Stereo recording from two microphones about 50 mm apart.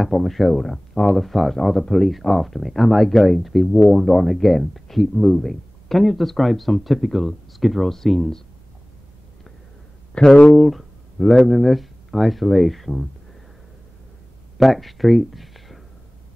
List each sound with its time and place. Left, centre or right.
0.0 s speech: centre
10.1 s speech: centre
10.5 s speech: centre
14.6 s speech: centre